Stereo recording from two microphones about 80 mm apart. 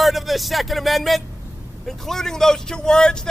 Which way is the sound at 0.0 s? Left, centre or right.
Centre.